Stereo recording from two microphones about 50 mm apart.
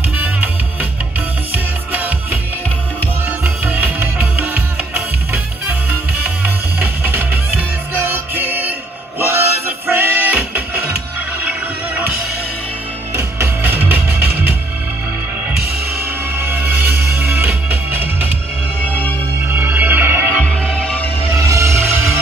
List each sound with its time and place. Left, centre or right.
1.5 s music: right
3.6 s music: right
13.6 s music: right
16.3 s music: right
17.2 s music: right
19.5 s music: right
20.4 s music: centre
21.3 s music: right